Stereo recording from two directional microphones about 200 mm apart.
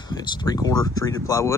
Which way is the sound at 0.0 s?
20° left (ahead or behind).